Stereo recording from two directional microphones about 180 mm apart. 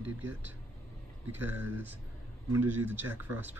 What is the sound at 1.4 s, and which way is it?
Speech, 10° right (ahead or behind).